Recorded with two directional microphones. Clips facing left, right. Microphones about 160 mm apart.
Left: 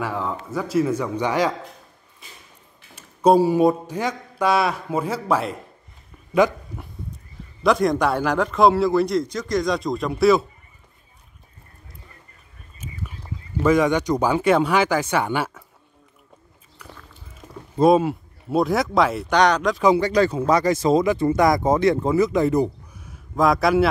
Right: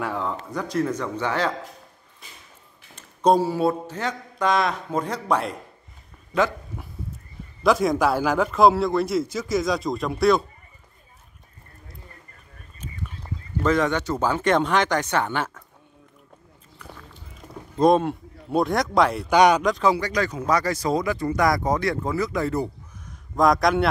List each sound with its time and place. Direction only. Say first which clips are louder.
0.0 s a man's voice: left 1 dB; centre (ahead or behind)
3.0 s a sound: left 3 dB; 10° left (ahead or behind)
7.6 s a man's voice: left 1 dB; centre (ahead or behind)
12.8 s a sound: left 1 dB; 5° left (ahead or behind)
16.7 s biting: right 1 dB; centre (ahead or behind)
17.7 s a man's voice: left 2 dB; 5° left (ahead or behind)
19.8 s speech: left 4 dB; 20° left (ahead or behind)
20.1 s speech: left 5 dB; 30° left (ahead or behind)
23.0 s a sound: even; centre (ahead or behind)